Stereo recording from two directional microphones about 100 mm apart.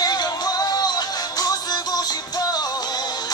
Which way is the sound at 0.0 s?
45° left (ahead or behind).